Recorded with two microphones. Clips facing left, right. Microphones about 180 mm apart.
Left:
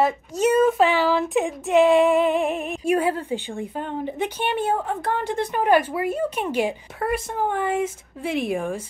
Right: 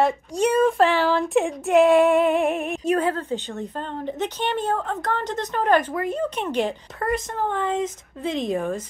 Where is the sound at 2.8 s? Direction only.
10° left (ahead or behind).